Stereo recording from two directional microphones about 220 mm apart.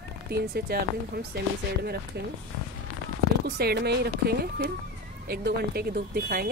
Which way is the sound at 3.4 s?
45° right (ahead or behind).